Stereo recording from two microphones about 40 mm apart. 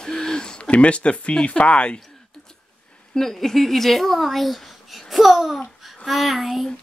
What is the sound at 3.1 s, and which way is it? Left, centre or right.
Speech, centre.